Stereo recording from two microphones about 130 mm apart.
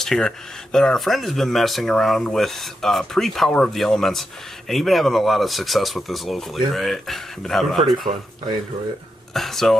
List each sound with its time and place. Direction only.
0.0 s speech: 5° left (ahead or behind)
8.1 s speech: 50° right (ahead or behind)
9.3 s speech: centre (ahead or behind)